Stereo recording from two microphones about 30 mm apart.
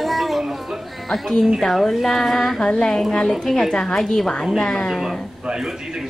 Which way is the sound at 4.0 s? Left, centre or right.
Centre.